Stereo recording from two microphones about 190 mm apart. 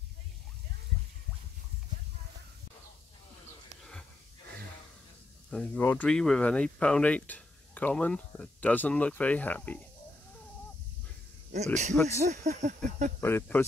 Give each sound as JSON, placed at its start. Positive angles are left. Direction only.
{"t": 5.5, "sound": "speech", "side_deg": 5}
{"t": 11.5, "sound": "a sound", "side_deg": -35}
{"t": 13.2, "sound": "speech", "side_deg": 10}